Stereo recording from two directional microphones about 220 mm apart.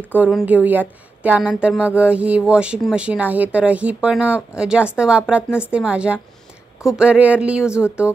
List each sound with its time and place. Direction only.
0.1 s a woman's voice: 5° right (ahead or behind)